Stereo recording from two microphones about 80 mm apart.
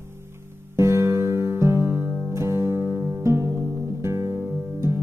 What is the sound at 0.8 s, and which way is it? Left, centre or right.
Music, right.